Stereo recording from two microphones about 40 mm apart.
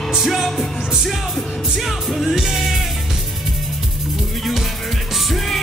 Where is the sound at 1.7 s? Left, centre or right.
Centre.